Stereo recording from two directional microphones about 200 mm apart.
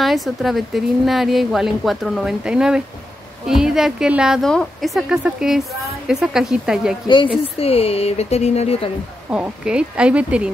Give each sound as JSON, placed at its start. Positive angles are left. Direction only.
{"t": 0.0, "sound": "a woman's voice", "side_deg": 0}
{"t": 7.1, "sound": "speech", "side_deg": 25}
{"t": 9.3, "sound": "a woman's voice", "side_deg": -5}